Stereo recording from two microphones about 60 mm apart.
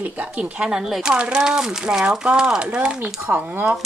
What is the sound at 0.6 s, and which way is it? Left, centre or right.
A woman's voice, centre.